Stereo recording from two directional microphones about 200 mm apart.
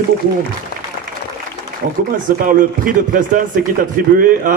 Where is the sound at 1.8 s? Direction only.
50° right (ahead or behind).